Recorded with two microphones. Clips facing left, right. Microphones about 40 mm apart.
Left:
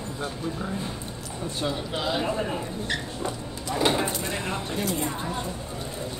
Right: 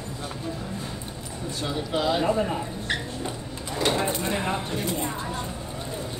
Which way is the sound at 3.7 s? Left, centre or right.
Centre.